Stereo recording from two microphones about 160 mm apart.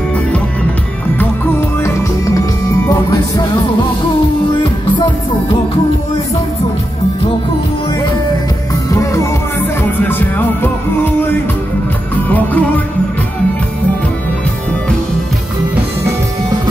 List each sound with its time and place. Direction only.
8.9 s music: 20° left (ahead or behind)